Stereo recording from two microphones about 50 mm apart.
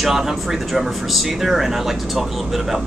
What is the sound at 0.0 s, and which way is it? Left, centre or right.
Speech, centre.